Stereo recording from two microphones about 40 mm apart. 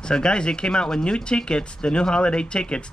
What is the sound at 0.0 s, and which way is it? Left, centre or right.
Speech, left.